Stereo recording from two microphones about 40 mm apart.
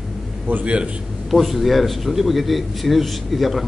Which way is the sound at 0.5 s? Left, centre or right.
Right.